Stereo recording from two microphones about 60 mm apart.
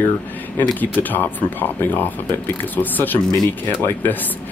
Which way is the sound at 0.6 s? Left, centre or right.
Left.